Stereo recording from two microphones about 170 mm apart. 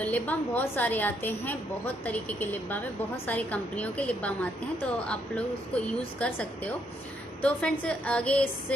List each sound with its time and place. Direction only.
0.0 s a woman's voice: 10° left (ahead or behind)